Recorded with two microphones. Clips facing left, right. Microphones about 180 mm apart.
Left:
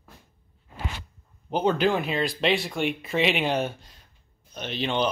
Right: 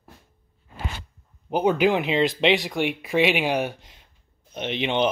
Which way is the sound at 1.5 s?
15° right (ahead or behind).